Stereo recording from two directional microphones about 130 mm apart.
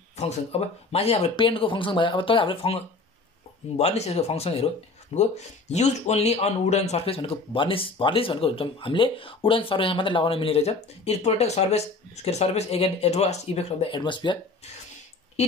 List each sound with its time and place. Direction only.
0.2 s speech: 55° left (ahead or behind)
1.3 s speech: 40° left (ahead or behind)
13.9 s speech: 35° left (ahead or behind)